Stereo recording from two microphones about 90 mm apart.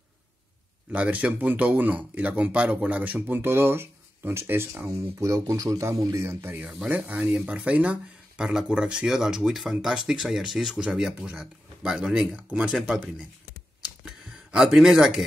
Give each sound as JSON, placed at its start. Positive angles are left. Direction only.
{"t": 0.9, "sound": "speech", "side_deg": -15}
{"t": 6.9, "sound": "speech", "side_deg": -15}
{"t": 14.3, "sound": "speech", "side_deg": -5}